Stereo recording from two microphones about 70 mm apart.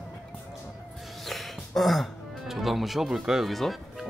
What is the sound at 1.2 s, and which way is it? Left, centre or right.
Gasp, centre.